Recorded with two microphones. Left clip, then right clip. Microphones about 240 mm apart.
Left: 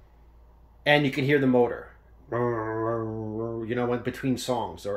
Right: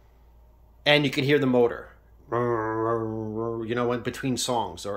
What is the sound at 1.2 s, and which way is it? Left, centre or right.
Speech, centre.